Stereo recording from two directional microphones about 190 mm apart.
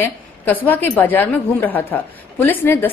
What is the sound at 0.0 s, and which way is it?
A woman's voice, 10° left (ahead or behind).